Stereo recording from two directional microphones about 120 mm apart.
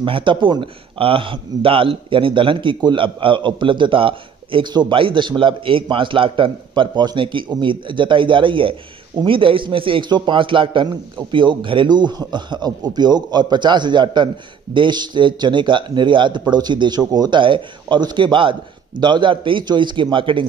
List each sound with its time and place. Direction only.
0.0 s a man's voice: 45° right (ahead or behind)